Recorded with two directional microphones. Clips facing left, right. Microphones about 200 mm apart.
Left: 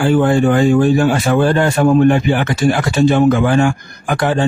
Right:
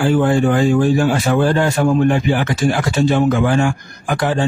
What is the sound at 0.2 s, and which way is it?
Speech, 60° left (ahead or behind).